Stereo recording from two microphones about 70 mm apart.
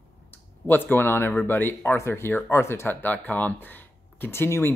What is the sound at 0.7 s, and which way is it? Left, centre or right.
Speech, left.